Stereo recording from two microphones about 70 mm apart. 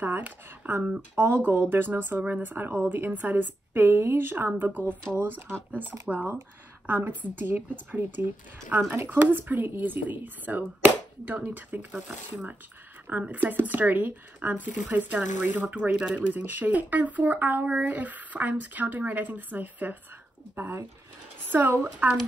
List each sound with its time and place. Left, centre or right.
0.0 s speech: right
0.8 s speech: centre
1.2 s speech: right